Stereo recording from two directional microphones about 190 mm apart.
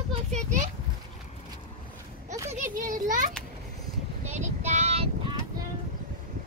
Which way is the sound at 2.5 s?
45° right (ahead or behind).